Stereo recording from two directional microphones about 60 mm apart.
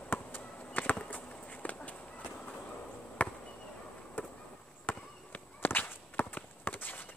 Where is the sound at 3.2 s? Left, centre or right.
Left.